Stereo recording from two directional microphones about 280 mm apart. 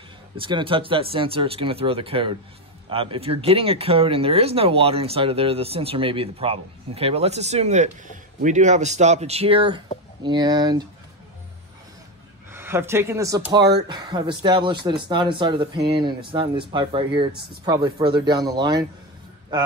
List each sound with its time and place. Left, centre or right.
0.4 s speech: centre
12.4 s speech: centre
13.6 s speech: right
13.8 s speech: centre